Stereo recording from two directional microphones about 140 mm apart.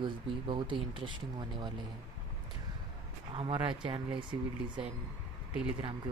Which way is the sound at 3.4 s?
40° right (ahead or behind).